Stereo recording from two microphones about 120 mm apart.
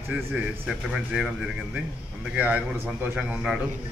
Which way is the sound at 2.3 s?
10° right (ahead or behind).